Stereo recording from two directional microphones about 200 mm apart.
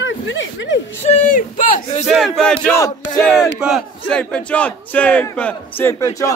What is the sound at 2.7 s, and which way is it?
Speech, 15° left (ahead or behind).